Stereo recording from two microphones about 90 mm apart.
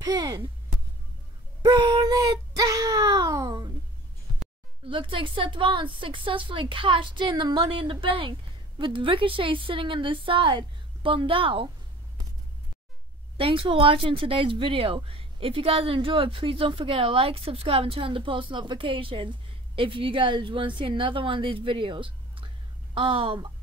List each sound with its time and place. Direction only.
0.0 s speech: 50° right (ahead or behind)
1.6 s wail: 50° right (ahead or behind)
4.8 s speech: 70° right (ahead or behind)
13.4 s speech: 75° right (ahead or behind)